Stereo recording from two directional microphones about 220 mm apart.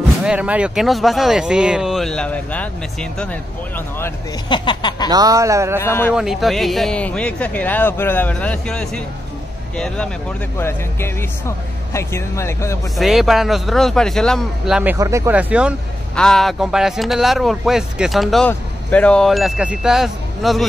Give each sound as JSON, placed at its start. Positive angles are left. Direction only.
{"t": 0.2, "sound": "speech", "side_deg": -5}
{"t": 4.5, "sound": "a sound", "side_deg": 20}
{"t": 5.1, "sound": "a man's voice", "side_deg": -15}
{"t": 5.8, "sound": "speech", "side_deg": 10}
{"t": 6.1, "sound": "speech", "side_deg": 0}
{"t": 12.9, "sound": "speech", "side_deg": 0}